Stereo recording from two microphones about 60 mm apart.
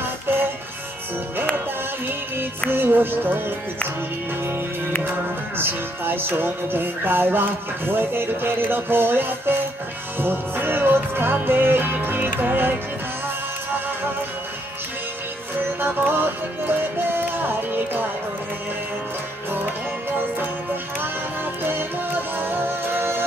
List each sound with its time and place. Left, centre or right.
0.0 s music: right
2.7 s music: right
5.6 s music: right
15.8 s music: right
21.6 s music: right